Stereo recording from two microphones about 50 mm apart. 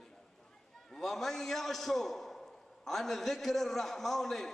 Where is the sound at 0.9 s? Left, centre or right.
Centre.